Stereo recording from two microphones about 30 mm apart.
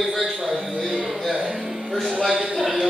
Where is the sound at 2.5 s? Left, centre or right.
Centre.